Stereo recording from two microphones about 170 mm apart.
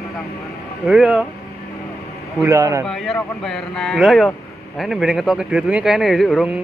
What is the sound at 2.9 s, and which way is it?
Speech, centre (ahead or behind).